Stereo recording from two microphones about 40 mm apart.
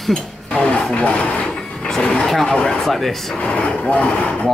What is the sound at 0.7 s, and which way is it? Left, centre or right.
Speech, left.